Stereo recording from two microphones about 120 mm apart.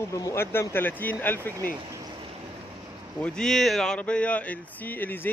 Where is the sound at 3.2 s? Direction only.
5° left (ahead or behind).